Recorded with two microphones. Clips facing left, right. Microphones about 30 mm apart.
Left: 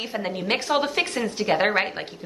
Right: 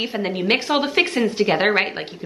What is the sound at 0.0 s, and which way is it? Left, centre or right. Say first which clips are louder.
A woman's voice: right 5 dB; right.